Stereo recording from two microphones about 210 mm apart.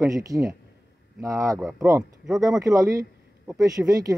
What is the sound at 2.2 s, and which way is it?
Speech, centre (ahead or behind).